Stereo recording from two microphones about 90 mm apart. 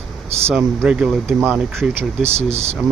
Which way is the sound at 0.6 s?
10° right (ahead or behind).